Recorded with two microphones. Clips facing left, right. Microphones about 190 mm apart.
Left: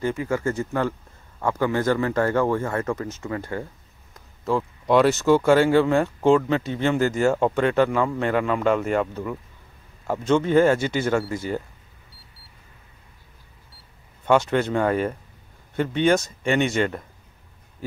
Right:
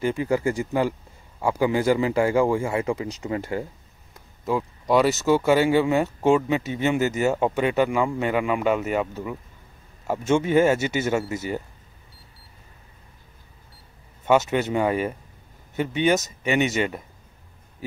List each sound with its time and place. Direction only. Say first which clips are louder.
0.0 s speech: right 2 dB; 15° right (ahead or behind)
4.5 s speech: left 1 dB; 5° right (ahead or behind)
14.2 s speech: left 1 dB; 5° right (ahead or behind)